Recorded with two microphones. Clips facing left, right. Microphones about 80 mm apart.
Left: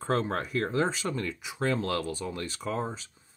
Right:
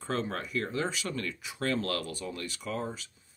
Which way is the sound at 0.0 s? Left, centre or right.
Left.